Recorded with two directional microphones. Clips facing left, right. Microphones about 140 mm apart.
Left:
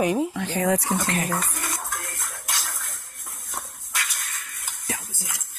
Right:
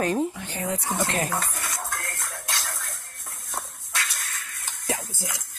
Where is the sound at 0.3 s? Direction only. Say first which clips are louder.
Left 7 dB; 90° left.